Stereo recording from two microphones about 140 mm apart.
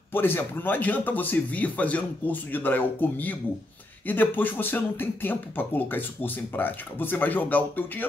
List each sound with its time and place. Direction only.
0.1 s speech: 15° left (ahead or behind)